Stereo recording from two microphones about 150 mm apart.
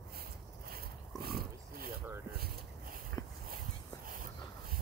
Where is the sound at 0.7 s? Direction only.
90° right.